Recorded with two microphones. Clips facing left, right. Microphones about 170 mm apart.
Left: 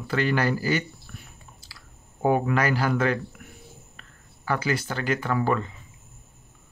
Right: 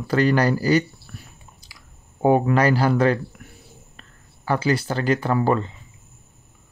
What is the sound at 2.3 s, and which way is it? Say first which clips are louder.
Speech: right 5 dB; 30° right (ahead or behind).